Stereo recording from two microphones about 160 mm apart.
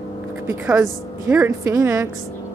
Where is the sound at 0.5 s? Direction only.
15° right (ahead or behind).